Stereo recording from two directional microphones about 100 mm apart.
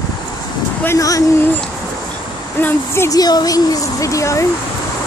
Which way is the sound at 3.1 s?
40° left (ahead or behind).